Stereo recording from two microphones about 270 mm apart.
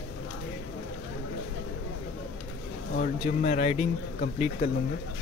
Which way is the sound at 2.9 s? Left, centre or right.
Left.